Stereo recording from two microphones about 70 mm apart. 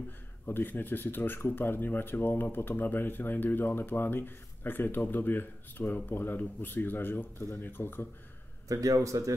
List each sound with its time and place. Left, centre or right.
0.5 s speech: left
8.7 s speech: right